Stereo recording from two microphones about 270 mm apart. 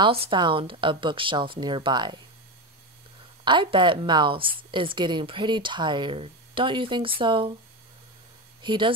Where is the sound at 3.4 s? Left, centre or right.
Centre.